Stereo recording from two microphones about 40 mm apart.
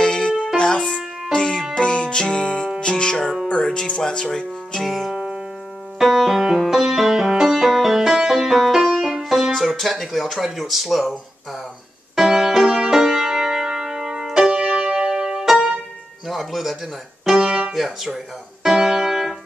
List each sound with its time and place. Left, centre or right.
0.0 s music: centre
4.0 s speech: centre
4.7 s speech: centre
5.1 s music: centre
5.9 s music: centre
9.6 s speech: centre
12.2 s music: centre
16.3 s speech: centre
17.2 s music: centre